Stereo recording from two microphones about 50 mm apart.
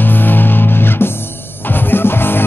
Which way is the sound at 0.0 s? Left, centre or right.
Left.